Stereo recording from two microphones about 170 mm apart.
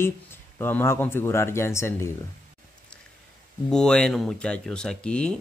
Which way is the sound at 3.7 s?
5° left (ahead or behind).